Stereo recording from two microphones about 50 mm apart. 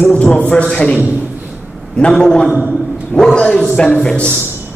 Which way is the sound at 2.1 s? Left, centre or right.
Centre.